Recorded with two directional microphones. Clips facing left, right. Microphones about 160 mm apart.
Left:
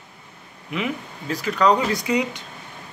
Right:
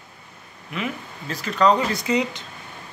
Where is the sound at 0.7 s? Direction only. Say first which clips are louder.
Left 3 dB; 10° left (ahead or behind).